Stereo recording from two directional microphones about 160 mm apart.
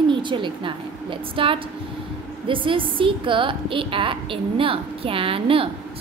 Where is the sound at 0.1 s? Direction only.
30° right (ahead or behind).